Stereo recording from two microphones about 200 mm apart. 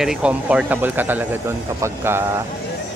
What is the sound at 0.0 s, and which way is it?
Speech, 5° right (ahead or behind).